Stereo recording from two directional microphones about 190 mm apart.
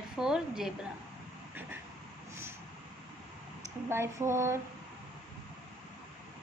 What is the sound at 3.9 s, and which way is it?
Speech, 15° right (ahead or behind).